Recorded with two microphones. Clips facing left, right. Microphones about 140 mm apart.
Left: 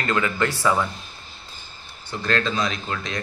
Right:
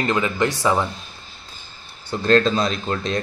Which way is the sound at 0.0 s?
20° right (ahead or behind).